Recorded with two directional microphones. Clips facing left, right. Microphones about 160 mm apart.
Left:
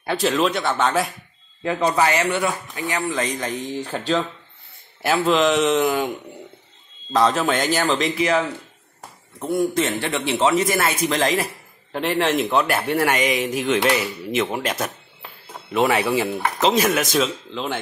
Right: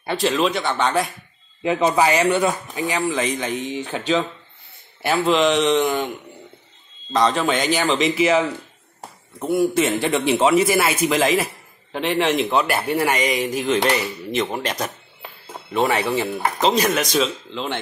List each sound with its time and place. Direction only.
0.0 s speech: centre (ahead or behind)
1.6 s speech: 20° right (ahead or behind)
2.9 s a man's voice: 10° right (ahead or behind)
5.0 s speech: centre (ahead or behind)
7.1 s speech: 5° left (ahead or behind)
9.4 s a man's voice: 5° right (ahead or behind)